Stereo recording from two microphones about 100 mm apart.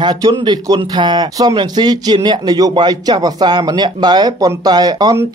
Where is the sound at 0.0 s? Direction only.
40° right (ahead or behind).